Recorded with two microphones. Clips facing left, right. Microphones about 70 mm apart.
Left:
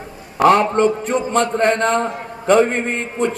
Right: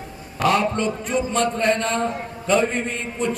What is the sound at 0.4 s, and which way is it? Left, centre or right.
A man's voice, left.